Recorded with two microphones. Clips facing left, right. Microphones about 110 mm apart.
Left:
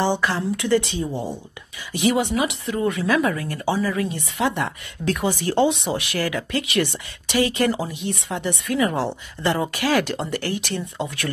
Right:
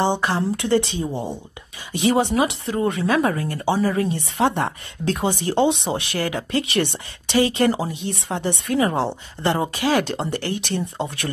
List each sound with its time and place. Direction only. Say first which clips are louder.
0.0 s speech: right 1 dB; 25° right (ahead or behind)